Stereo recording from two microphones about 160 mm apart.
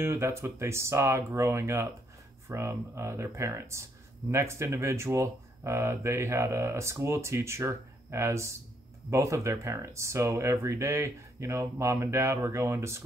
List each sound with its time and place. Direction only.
0.0 s speech: 15° right (ahead or behind)